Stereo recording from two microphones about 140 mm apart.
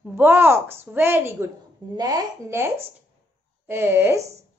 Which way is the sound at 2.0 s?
25° right (ahead or behind).